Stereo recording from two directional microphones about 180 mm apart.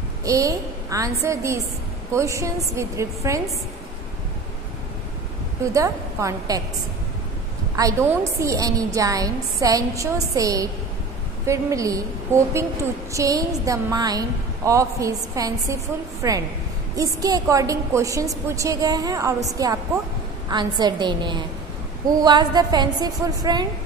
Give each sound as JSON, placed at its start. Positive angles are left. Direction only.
{"t": 0.2, "sound": "a woman's voice", "side_deg": -20}
{"t": 5.6, "sound": "a woman's voice", "side_deg": -15}
{"t": 7.7, "sound": "a woman's voice", "side_deg": -15}